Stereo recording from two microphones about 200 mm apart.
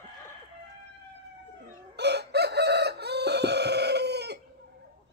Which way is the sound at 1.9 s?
55° right (ahead or behind).